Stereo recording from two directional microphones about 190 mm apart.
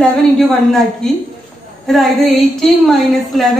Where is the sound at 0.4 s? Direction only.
Centre (ahead or behind).